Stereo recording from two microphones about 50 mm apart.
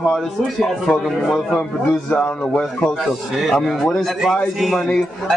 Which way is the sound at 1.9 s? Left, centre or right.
Left.